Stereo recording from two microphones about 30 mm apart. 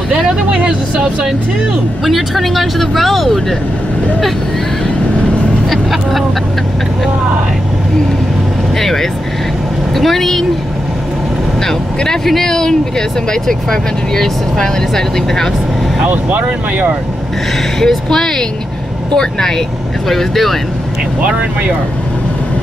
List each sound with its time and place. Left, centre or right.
0.5 s vehicle: right
2.0 s speech: centre
5.7 s vehicle: centre
8.7 s vehicle: centre
9.9 s speech: centre
12.4 s speech: centre
16.1 s speech: right
17.7 s speech: centre
20.1 s speech: centre